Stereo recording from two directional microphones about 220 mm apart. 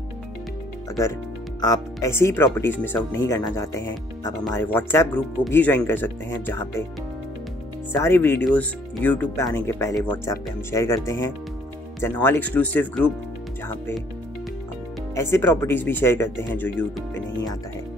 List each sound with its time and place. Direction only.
1.6 s speech: 15° left (ahead or behind)
7.9 s speech: 10° left (ahead or behind)
15.1 s speech: 10° left (ahead or behind)